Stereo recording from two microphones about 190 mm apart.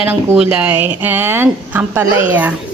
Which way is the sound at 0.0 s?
10° right (ahead or behind).